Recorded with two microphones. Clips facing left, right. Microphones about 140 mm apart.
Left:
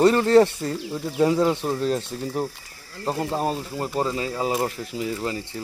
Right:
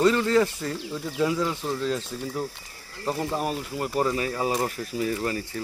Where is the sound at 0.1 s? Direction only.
35° left (ahead or behind).